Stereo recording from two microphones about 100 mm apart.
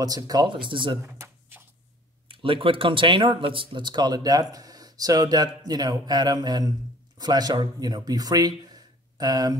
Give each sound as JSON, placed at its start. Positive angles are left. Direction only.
{"t": 0.0, "sound": "speech", "side_deg": -40}
{"t": 1.0, "sound": "a sound", "side_deg": -20}
{"t": 2.2, "sound": "speech", "side_deg": -60}